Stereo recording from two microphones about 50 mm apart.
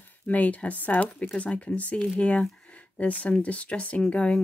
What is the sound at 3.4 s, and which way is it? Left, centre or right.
Speech, left.